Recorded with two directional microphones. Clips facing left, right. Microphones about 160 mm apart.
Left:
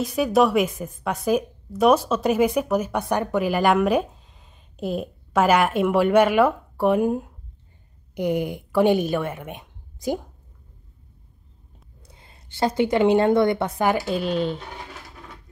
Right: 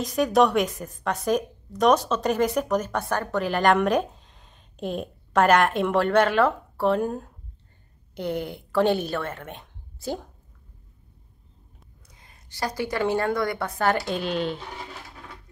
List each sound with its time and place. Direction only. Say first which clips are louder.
0.0 s a woman's voice: left 1 dB; 5° left (ahead or behind)
12.1 s a woman's voice: left 5 dB; 25° left (ahead or behind); by 14.6 s centre (ahead or behind)